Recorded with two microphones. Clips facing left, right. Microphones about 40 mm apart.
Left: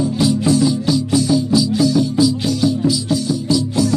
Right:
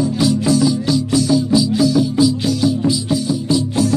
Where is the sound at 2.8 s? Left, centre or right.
Centre.